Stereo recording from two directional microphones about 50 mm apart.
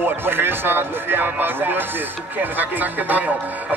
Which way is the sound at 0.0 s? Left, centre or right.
Right.